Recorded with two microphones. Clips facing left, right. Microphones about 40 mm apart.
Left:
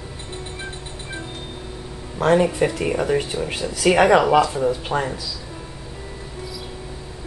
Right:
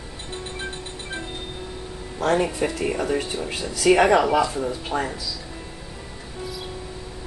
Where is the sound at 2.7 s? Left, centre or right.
Centre.